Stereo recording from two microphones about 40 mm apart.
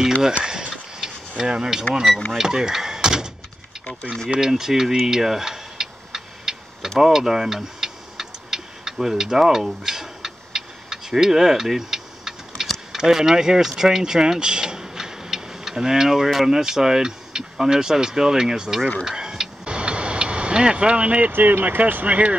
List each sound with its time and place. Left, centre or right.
0.4 s a sound: centre
1.0 s speech: centre
2.3 s door: centre
4.4 s speech: centre
5.0 s tick-tock: centre
12.9 s speech: centre
19.0 s a sound: centre
19.6 s vehicle: right
21.3 s speech: right
22.0 s speech: right